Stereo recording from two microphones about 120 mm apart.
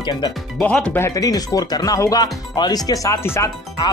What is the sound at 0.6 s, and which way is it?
Speech, 10° left (ahead or behind).